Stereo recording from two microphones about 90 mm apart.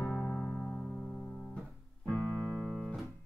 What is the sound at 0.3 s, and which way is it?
Music, 15° left (ahead or behind).